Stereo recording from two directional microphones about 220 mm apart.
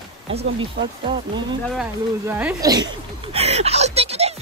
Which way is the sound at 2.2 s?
10° right (ahead or behind).